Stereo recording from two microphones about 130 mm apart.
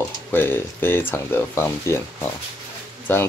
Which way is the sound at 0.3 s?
15° left (ahead or behind).